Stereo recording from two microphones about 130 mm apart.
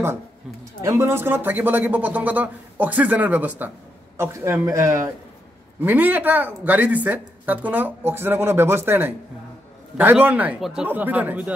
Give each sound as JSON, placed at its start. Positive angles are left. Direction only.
{"t": 0.8, "sound": "speech", "side_deg": -20}